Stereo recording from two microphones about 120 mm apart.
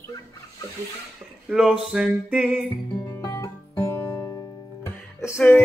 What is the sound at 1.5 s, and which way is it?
Speech, centre (ahead or behind).